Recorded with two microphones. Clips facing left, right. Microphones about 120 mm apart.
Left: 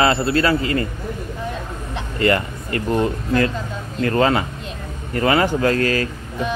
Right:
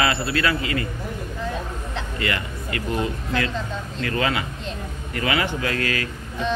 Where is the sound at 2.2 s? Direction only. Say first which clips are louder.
Left 11 dB; 40° left (ahead or behind).